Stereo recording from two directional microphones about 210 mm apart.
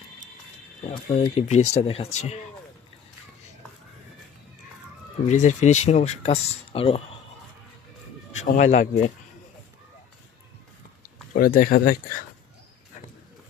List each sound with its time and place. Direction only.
0.8 s speech: 30° left (ahead or behind)
5.3 s speech: 35° left (ahead or behind)
8.3 s speech: 35° left (ahead or behind)
11.0 s speech: 45° left (ahead or behind)